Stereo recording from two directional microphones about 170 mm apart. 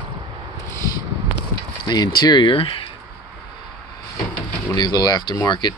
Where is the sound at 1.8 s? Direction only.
25° left (ahead or behind).